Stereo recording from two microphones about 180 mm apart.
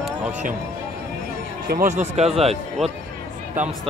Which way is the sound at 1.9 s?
40° right (ahead or behind).